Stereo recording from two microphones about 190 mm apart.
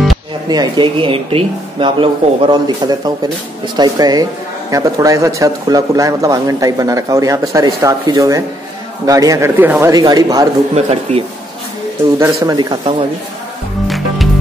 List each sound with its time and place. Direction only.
0.5 s speech: 25° right (ahead or behind)
10.9 s speech: 30° right (ahead or behind)
12.2 s speech: 15° right (ahead or behind)
13.8 s music: centre (ahead or behind)